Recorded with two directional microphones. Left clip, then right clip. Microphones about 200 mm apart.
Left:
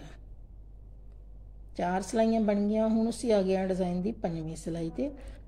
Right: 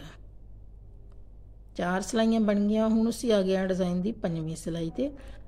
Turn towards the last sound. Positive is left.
turn(degrees=-15)  # may be behind; listen again after turning